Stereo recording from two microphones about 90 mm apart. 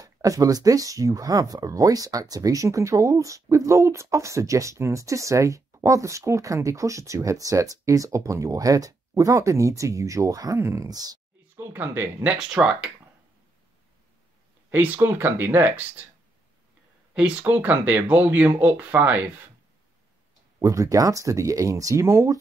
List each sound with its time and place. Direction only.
0.0 s speech: 40° right (ahead or behind)
11.4 s speech: 25° right (ahead or behind)
12.4 s speech: 10° right (ahead or behind)
14.7 s speech: 20° right (ahead or behind)
17.1 s speech: 15° right (ahead or behind)
20.5 s speech: 35° right (ahead or behind)